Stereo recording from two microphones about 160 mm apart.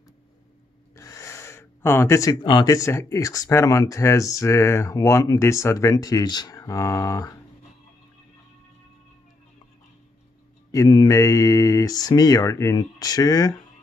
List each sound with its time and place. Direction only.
0.9 s gasp: 20° left (ahead or behind)
2.4 s speech: 25° left (ahead or behind)
10.7 s speech: 25° left (ahead or behind)